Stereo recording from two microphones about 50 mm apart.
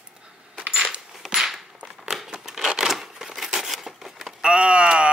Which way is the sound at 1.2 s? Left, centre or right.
Centre.